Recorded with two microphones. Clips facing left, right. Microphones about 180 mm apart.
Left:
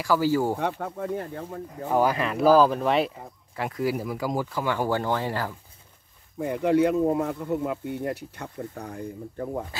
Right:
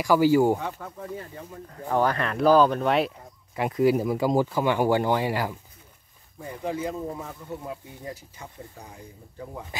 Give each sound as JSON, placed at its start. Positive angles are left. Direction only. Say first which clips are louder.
{"t": 0.0, "sound": "speech", "louder": "right 4 dB", "side_deg": -15}
{"t": 0.6, "sound": "speech", "louder": "left 6 dB", "side_deg": 60}
{"t": 1.9, "sound": "speech", "louder": "left 1 dB", "side_deg": 10}
{"t": 3.5, "sound": "speech", "louder": "right 5 dB", "side_deg": -20}
{"t": 6.3, "sound": "speech", "louder": "left 9 dB", "side_deg": 70}